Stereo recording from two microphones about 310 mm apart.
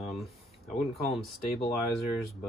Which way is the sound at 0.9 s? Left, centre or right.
Centre.